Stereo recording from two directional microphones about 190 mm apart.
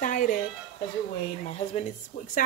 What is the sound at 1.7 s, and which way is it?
Speech, 40° left (ahead or behind).